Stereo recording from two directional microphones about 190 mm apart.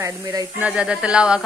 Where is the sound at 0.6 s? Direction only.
5° right (ahead or behind).